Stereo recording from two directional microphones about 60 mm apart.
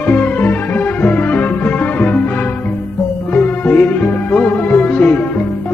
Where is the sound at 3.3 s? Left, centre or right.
Left.